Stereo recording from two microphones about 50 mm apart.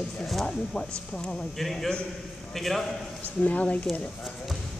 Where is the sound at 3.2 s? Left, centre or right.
Left.